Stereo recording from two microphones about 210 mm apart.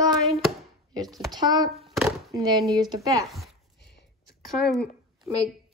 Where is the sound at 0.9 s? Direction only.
20° right (ahead or behind).